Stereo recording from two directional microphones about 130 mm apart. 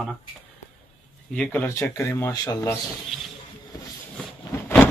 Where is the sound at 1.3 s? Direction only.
15° left (ahead or behind).